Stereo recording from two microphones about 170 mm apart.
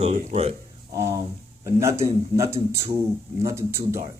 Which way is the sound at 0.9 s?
15° right (ahead or behind).